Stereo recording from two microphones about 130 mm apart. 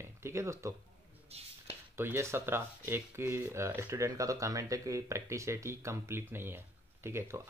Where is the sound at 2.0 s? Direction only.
20° right (ahead or behind).